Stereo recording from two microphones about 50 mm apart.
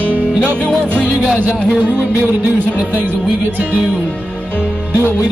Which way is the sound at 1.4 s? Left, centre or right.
Right.